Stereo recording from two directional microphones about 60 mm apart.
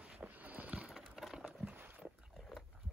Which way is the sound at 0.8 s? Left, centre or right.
Centre.